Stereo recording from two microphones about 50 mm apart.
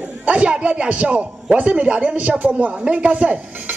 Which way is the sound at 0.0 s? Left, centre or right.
Right.